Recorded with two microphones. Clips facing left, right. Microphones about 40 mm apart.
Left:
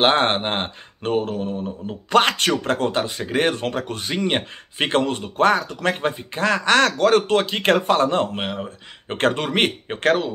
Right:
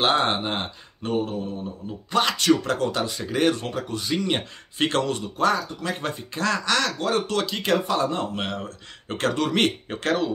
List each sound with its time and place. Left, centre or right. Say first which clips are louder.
0.0 s speech: left 4 dB; left
1.3 s mantra: left 4 dB; left
1.9 s speech: left 6 dB; left
4.1 s speech: left 3 dB; left
5.9 s speech: left 5 dB; left
7.0 s speech: left 8 dB; left
7.2 s speech: left 6 dB; left
7.6 s speech: left 4 dB; left
8.4 s speech: left 2 dB; left
9.1 s speech: left 3 dB; left